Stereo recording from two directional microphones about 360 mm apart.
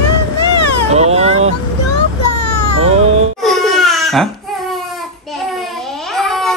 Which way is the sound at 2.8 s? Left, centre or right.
Centre.